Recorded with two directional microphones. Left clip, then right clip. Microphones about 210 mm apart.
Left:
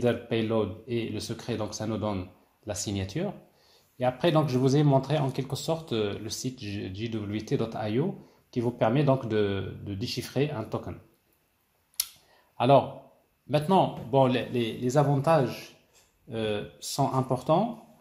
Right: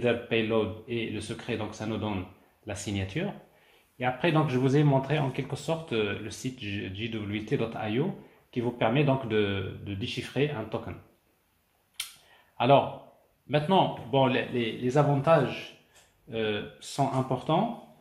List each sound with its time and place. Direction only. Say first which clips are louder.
0.0 s speech: right 1 dB; 40° left (ahead or behind)
12.5 s a man's voice: left 1 dB; 40° left (ahead or behind)